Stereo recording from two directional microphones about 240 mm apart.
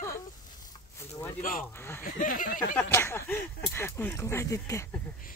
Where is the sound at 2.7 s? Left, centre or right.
Centre.